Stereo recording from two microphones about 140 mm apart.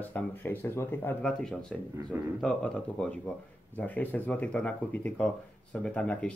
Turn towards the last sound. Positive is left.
turn(degrees=10)  # may be behind; listen again after turning